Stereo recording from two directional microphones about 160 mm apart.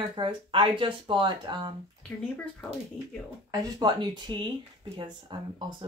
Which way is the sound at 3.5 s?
25° right (ahead or behind).